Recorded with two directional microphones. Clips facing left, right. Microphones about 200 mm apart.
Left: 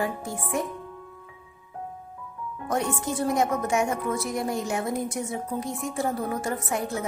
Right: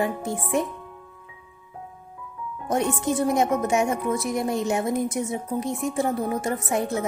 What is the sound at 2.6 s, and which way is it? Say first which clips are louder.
Speech: right 4 dB; 20° right (ahead or behind).